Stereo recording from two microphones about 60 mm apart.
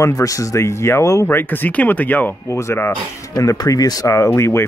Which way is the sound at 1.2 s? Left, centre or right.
Left.